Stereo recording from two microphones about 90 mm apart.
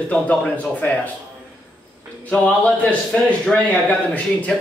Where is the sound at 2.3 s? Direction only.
15° left (ahead or behind).